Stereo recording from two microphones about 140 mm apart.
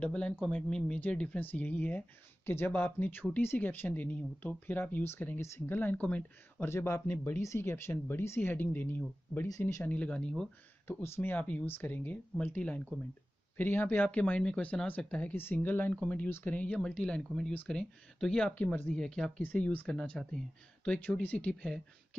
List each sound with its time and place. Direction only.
0.0 s speech: 10° left (ahead or behind)
9.9 s speech: 5° left (ahead or behind)